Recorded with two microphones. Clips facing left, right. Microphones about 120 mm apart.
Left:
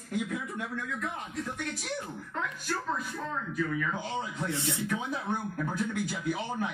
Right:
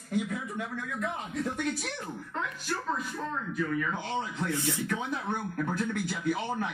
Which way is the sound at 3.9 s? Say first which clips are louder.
Right 1 dB; 5° left (ahead or behind).